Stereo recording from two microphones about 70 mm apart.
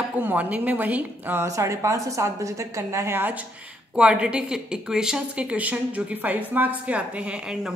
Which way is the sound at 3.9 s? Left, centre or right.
Centre.